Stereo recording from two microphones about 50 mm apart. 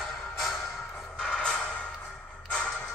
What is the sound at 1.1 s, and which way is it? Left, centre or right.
Music, centre.